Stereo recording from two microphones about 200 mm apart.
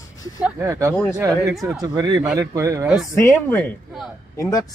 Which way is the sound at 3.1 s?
15° left (ahead or behind).